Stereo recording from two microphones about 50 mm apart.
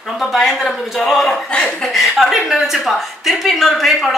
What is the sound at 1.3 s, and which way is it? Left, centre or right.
Speech, centre.